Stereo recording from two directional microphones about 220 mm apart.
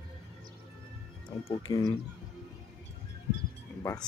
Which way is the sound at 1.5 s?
20° left (ahead or behind).